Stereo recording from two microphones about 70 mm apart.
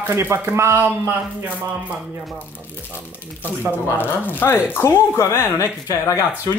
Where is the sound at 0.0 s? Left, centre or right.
Right.